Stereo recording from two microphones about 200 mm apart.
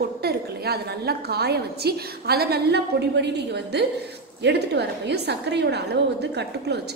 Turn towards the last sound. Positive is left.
turn(degrees=-55)  # may be behind; listen again after turning